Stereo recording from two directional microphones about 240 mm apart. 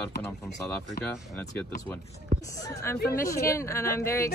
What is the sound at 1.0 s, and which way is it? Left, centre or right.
Speech, left.